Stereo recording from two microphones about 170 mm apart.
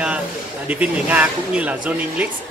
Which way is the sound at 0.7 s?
10° right (ahead or behind).